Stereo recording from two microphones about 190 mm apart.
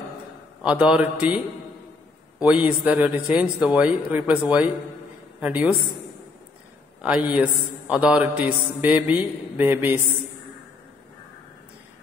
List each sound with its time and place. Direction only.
0.6 s a man's voice: 5° right (ahead or behind)
7.0 s a man's voice: 5° right (ahead or behind)